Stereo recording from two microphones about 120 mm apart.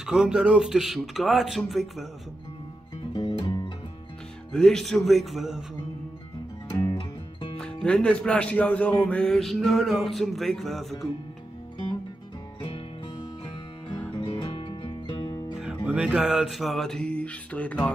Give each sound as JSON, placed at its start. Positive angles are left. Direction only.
{"t": 0.0, "sound": "speech", "side_deg": -5}
{"t": 3.2, "sound": "music", "side_deg": 35}
{"t": 4.5, "sound": "speech", "side_deg": 5}
{"t": 6.7, "sound": "music", "side_deg": 30}
{"t": 7.5, "sound": "speech", "side_deg": 10}
{"t": 13.8, "sound": "music", "side_deg": 45}
{"t": 15.6, "sound": "music", "side_deg": -10}